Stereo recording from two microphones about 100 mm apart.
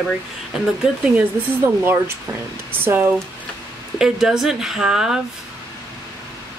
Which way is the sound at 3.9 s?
5° right (ahead or behind).